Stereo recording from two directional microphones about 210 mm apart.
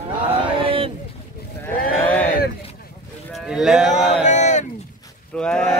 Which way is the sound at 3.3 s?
Centre (ahead or behind).